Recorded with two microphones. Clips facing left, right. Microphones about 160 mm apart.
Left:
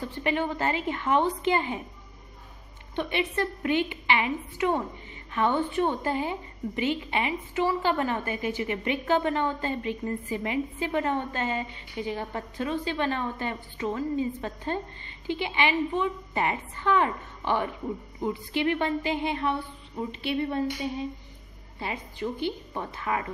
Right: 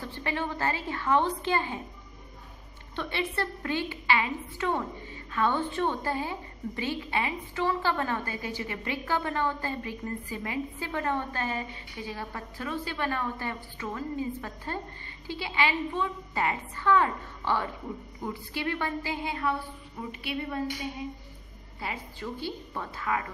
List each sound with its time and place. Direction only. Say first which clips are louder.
0.2 s a woman's voice: left 4 dB; 20° left (ahead or behind)
3.0 s a woman's voice: left 4 dB; 15° left (ahead or behind)
21.7 s a woman's voice: left 3 dB; 25° left (ahead or behind)